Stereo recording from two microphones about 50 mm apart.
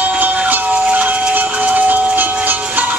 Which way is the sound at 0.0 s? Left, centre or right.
Right.